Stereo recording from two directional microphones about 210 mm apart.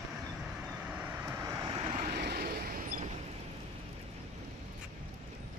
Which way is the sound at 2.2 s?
45° right (ahead or behind).